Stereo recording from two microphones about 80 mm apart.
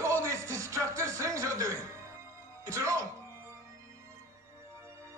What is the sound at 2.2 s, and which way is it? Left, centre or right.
Music, right.